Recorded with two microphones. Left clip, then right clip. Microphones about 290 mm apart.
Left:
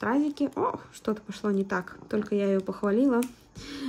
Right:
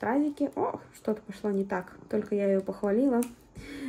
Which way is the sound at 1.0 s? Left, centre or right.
Centre.